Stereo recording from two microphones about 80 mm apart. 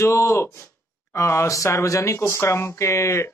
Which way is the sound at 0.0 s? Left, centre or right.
Left.